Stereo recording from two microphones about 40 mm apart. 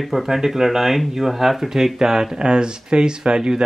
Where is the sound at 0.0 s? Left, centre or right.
Centre.